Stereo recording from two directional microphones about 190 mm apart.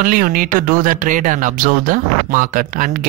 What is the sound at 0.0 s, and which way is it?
Speech, 45° right (ahead or behind).